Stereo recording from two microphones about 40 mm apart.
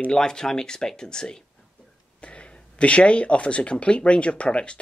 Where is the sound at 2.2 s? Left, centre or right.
Left.